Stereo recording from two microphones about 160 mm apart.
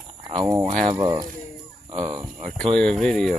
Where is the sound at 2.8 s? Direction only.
5° left (ahead or behind).